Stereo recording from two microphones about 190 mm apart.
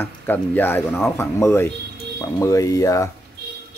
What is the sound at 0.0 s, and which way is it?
Speech, 10° left (ahead or behind).